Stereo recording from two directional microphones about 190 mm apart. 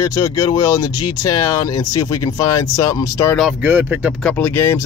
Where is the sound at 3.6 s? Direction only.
10° right (ahead or behind).